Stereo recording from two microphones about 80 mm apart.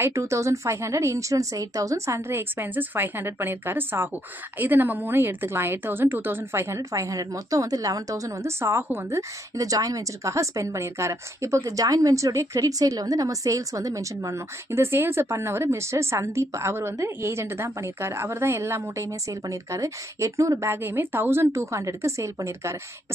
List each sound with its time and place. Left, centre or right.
0.0 s speech: right
9.1 s speech: right